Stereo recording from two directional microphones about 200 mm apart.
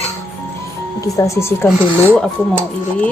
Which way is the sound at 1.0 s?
15° left (ahead or behind).